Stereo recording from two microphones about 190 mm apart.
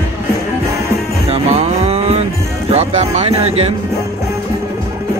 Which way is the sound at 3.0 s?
30° right (ahead or behind).